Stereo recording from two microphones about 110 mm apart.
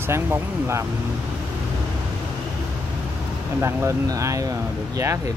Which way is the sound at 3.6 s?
25° right (ahead or behind).